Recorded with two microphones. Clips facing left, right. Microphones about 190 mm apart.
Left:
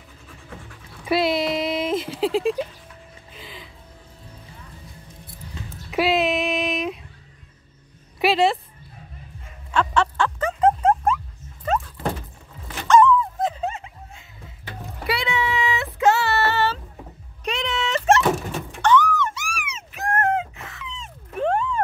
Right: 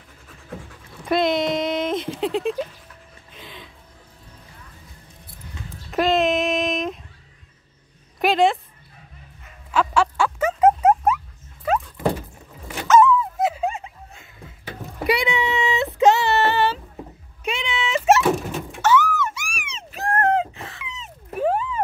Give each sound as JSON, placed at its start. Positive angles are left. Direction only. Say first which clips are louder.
{"t": 1.0, "sound": "speech", "louder": "right 1 dB", "side_deg": 5}
{"t": 3.3, "sound": "music", "louder": "right 1 dB", "side_deg": 0}
{"t": 5.9, "sound": "female singing", "louder": "right 1 dB", "side_deg": 5}
{"t": 8.2, "sound": "a sound", "louder": "right 1 dB", "side_deg": 5}
{"t": 9.7, "sound": "music", "louder": "right 1 dB", "side_deg": -5}
{"t": 11.6, "sound": "dog", "louder": "right 3 dB", "side_deg": -5}
{"t": 15.0, "sound": "child singing", "louder": "right 3 dB", "side_deg": -15}
{"t": 17.5, "sound": "thunk", "louder": "even", "side_deg": -5}
{"t": 19.7, "sound": "a sound", "louder": "right 2 dB", "side_deg": -30}
{"t": 20.8, "sound": "a sound", "louder": "left 1 dB", "side_deg": -5}